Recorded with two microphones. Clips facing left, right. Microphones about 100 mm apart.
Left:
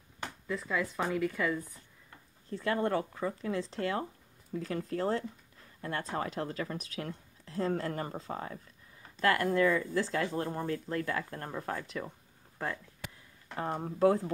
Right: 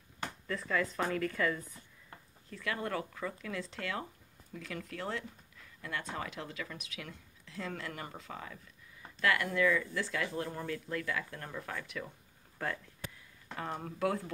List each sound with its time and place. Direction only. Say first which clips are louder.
0.5 s speech: left 1 dB; 15° left (ahead or behind)
2.5 s speech: left 6 dB; 30° left (ahead or behind)
12.5 s speech: left 1 dB; 15° left (ahead or behind)
13.6 s speech: left 7 dB; 25° left (ahead or behind)